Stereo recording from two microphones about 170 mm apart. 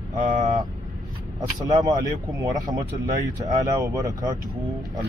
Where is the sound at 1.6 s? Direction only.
25° right (ahead or behind).